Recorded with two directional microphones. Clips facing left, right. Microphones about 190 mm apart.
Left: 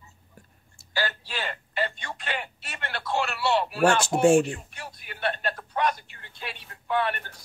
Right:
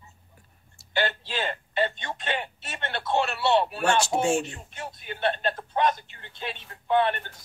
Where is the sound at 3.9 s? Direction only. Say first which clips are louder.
Left 3 dB; 55° left (ahead or behind).